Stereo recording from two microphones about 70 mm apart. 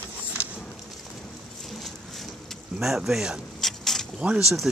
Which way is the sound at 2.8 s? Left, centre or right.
Centre.